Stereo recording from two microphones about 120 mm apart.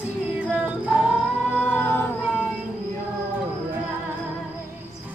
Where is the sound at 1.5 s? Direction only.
20° left (ahead or behind).